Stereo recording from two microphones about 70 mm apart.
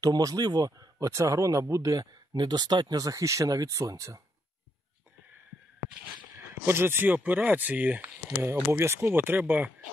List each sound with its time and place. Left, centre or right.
0.0 s speech: right
0.7 s a man's voice: right
3.0 s a man's voice: right
6.5 s speech: right
8.4 s speech: right